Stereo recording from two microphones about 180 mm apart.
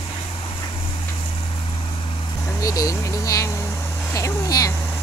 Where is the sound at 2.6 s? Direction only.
20° left (ahead or behind).